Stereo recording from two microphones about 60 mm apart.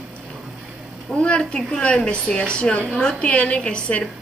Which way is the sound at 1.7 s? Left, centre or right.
Left.